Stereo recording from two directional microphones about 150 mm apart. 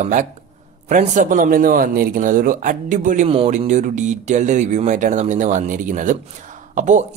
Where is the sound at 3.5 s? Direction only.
55° right (ahead or behind).